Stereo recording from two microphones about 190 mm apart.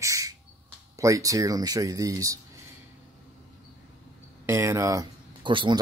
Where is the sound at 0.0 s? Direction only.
15° right (ahead or behind).